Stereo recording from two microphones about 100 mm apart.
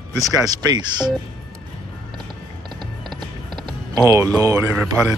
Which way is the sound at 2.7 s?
50° right (ahead or behind).